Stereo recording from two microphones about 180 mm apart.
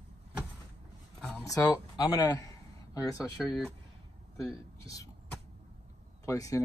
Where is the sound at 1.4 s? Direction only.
20° left (ahead or behind).